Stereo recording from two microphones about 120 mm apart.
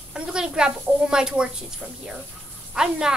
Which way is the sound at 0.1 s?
5° right (ahead or behind).